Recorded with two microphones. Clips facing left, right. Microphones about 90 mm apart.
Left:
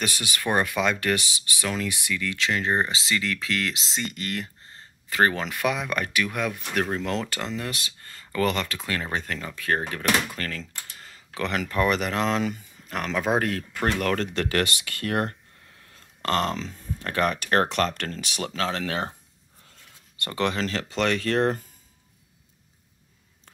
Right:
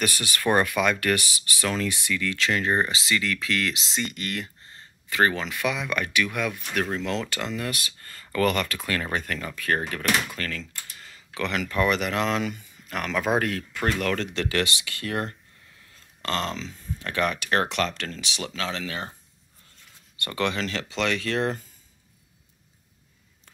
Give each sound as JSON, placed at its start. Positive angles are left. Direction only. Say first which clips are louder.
{"t": 0.0, "sound": "speech", "louder": "right 3 dB", "side_deg": 15}
{"t": 5.3, "sound": "speech", "louder": "left 1 dB", "side_deg": 45}
{"t": 10.3, "sound": "speech", "louder": "even", "side_deg": 35}
{"t": 14.1, "sound": "speech", "louder": "left 1 dB", "side_deg": 45}
{"t": 20.2, "sound": "speech", "louder": "left 1 dB", "side_deg": 30}